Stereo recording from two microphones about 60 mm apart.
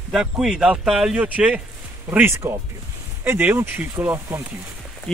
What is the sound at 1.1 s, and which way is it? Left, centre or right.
Speech, right.